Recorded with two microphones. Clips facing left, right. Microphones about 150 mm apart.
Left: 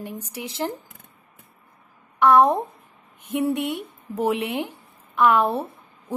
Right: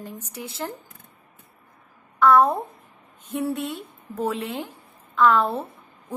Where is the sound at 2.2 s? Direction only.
15° left (ahead or behind).